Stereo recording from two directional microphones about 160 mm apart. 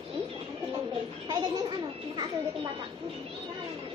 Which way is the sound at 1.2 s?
25° right (ahead or behind).